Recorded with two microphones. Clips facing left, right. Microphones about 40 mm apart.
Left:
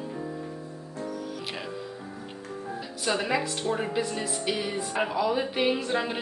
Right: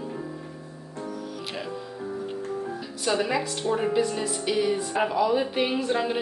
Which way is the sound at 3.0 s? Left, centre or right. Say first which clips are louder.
Right 2 dB; centre.